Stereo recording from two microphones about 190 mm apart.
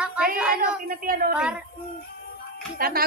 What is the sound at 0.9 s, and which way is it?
Speech, 50° right (ahead or behind).